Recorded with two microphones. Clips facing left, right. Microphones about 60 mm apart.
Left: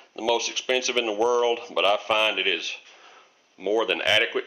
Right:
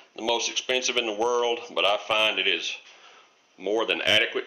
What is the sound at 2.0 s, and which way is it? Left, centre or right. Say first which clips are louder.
Speech: left 1 dB; centre.